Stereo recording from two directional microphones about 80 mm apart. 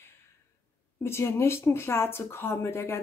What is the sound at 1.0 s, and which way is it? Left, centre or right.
Speech, left.